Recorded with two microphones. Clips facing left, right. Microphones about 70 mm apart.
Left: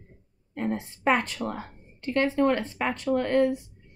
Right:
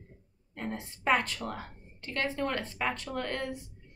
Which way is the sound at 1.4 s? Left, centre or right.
Left.